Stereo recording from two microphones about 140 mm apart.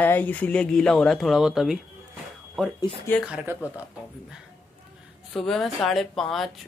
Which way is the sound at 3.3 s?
5° right (ahead or behind).